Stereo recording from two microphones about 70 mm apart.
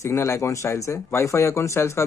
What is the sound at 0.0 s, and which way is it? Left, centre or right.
A man's voice, left.